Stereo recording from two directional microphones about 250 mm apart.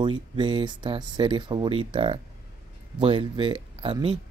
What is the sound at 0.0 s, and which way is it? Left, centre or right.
Speech, centre.